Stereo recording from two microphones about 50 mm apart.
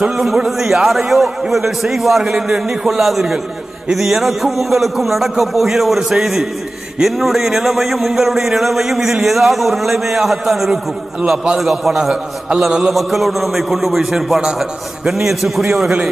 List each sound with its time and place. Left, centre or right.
0.5 s a man's voice: centre
2.3 s a man's voice: centre
10.7 s a man's voice: centre
12.9 s a man's voice: centre